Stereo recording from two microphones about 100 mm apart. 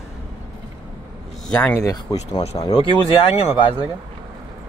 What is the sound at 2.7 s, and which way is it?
Speech, 65° left (ahead or behind).